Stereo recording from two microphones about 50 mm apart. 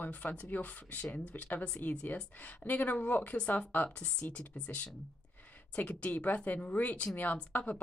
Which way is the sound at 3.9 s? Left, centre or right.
Left.